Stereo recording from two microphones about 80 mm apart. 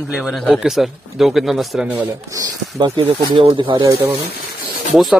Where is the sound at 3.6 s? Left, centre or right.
Right.